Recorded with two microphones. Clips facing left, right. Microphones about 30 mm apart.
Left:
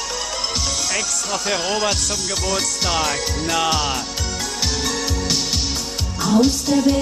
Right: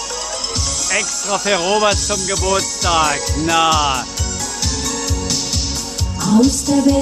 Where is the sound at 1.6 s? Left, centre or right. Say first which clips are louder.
Right 7 dB; centre.